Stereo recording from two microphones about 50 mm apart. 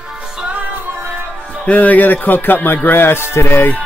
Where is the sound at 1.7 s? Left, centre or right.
Left.